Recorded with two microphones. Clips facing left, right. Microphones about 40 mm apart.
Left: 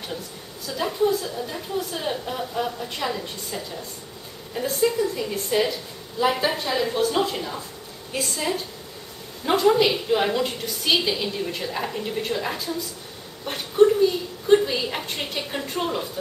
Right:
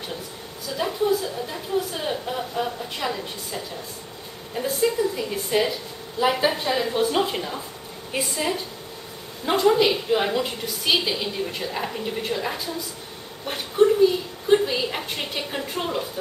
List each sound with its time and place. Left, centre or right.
0.7 s a woman's voice: centre
9.5 s a woman's voice: centre
13.5 s a sound: centre